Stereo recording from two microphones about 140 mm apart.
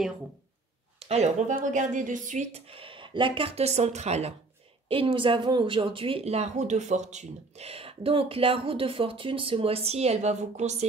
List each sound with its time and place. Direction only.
0.9 s a sound: 50° right (ahead or behind)
1.5 s speech: 65° right (ahead or behind)
4.8 s speech: 40° right (ahead or behind)